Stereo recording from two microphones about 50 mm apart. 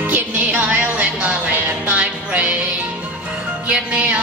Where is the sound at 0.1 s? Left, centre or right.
Right.